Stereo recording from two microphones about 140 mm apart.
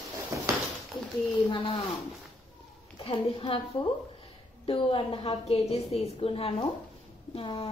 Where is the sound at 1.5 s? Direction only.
40° left (ahead or behind).